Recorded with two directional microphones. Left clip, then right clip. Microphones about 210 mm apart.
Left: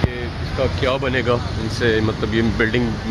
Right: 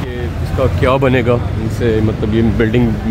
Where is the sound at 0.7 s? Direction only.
35° right (ahead or behind).